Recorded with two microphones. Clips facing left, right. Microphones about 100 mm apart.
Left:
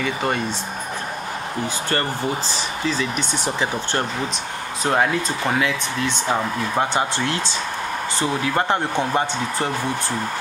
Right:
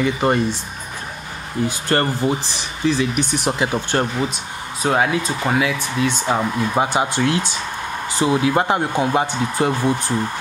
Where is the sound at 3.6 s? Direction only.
15° right (ahead or behind).